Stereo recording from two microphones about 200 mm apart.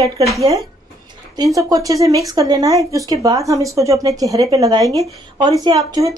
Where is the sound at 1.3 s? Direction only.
15° right (ahead or behind).